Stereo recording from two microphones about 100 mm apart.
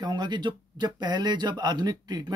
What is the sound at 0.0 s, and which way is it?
Speech, 50° right (ahead or behind).